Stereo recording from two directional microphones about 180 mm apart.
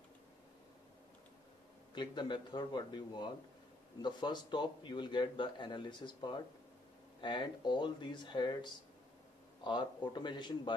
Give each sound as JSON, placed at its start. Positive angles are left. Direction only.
{"t": 2.0, "sound": "a man's voice", "side_deg": 25}